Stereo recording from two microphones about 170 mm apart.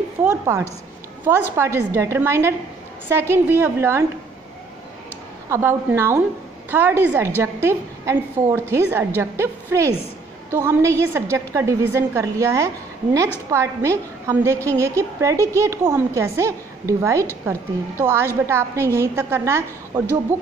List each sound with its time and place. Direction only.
0.2 s a woman's voice: 15° right (ahead or behind)
5.5 s a woman's voice: 10° right (ahead or behind)